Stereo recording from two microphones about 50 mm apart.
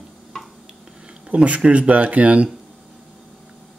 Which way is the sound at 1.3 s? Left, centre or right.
Right.